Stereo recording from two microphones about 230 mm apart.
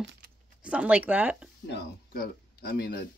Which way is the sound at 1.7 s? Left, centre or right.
Left.